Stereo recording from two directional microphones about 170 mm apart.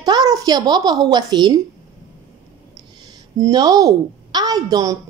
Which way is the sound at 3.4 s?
20° right (ahead or behind).